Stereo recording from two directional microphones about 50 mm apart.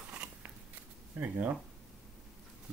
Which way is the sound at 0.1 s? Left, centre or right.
Right.